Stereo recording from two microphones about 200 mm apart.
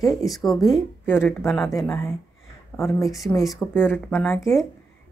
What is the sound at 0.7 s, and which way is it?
A woman's voice, 10° left (ahead or behind).